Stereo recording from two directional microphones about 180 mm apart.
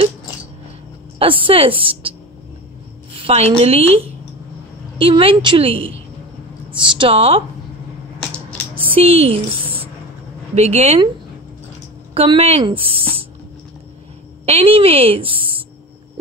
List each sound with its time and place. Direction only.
1.2 s a woman's voice: 30° right (ahead or behind)
3.2 s speech: 35° right (ahead or behind)
8.7 s a sound: 30° right (ahead or behind)
10.5 s speech: 35° right (ahead or behind)
12.1 s speech: 30° right (ahead or behind)
14.4 s a woman's voice: 35° right (ahead or behind)